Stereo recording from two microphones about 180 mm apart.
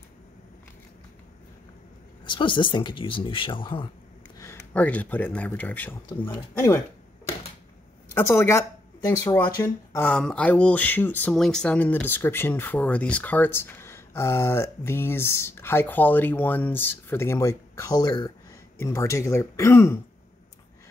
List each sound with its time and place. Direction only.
2.2 s speech: 25° left (ahead or behind)
4.4 s speech: 15° left (ahead or behind)
8.1 s speech: 15° left (ahead or behind)